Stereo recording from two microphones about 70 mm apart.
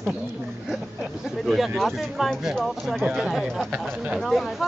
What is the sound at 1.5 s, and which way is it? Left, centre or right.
Speech, centre.